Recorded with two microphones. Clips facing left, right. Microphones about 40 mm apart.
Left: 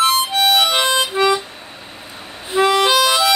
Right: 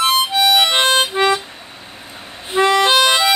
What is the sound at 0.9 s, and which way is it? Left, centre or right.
Harmonica, right.